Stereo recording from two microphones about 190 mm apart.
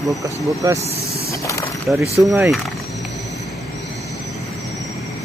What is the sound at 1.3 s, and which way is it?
Speech, 15° left (ahead or behind).